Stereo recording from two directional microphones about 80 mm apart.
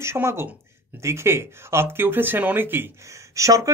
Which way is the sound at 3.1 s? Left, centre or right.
Right.